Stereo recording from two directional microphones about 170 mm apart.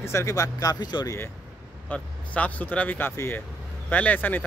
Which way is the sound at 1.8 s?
10° left (ahead or behind).